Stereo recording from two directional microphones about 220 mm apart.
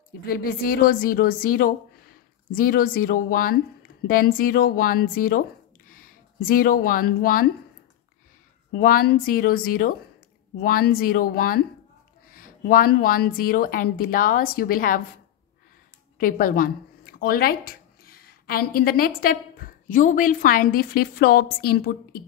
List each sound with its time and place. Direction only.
0.3 s a woman's voice: 40° left (ahead or behind)
8.7 s a woman's voice: 45° left (ahead or behind)
16.2 s speech: 40° left (ahead or behind)